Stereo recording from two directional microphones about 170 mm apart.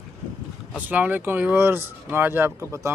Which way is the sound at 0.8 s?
10° right (ahead or behind).